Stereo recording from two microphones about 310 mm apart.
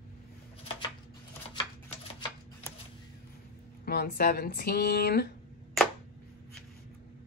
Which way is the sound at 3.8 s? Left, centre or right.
Left.